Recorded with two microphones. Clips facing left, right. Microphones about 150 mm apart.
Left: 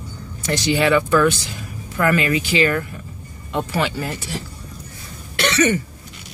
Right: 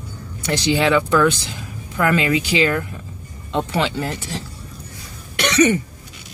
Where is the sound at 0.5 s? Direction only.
15° right (ahead or behind).